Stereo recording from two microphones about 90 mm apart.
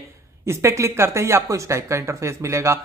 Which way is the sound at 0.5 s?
30° right (ahead or behind).